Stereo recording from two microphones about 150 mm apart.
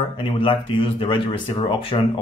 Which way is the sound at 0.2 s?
35° left (ahead or behind).